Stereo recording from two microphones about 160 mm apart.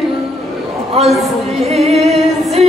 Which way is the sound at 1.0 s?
40° right (ahead or behind).